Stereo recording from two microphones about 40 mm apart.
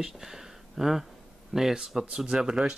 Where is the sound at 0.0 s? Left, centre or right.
Centre.